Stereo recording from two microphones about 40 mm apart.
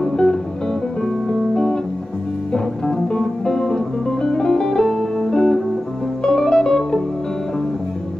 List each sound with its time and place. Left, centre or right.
0.0 s music: centre